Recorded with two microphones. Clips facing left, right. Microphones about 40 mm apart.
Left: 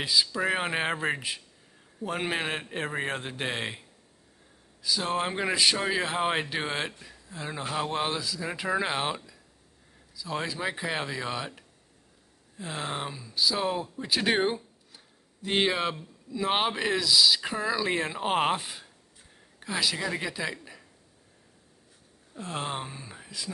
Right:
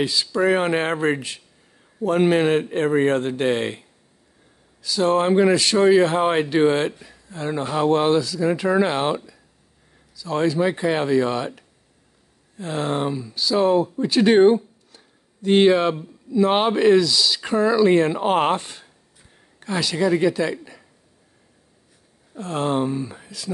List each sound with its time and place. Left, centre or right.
0.0 s speech: centre
4.8 s a man's voice: centre
22.4 s speech: centre